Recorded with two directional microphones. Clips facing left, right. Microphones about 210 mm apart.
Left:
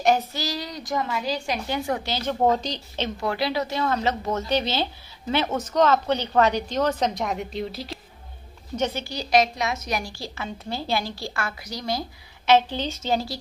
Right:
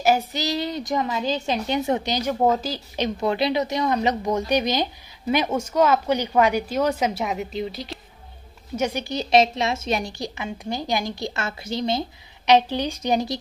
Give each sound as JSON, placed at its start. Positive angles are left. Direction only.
{"t": 0.3, "sound": "a woman's voice", "side_deg": -20}
{"t": 2.4, "sound": "a woman's voice", "side_deg": -5}
{"t": 3.2, "sound": "a woman's voice", "side_deg": -20}
{"t": 8.7, "sound": "a woman's voice", "side_deg": -15}